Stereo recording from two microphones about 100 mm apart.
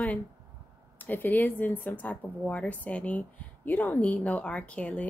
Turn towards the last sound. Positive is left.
turn(degrees=15)  # may be behind; listen again after turning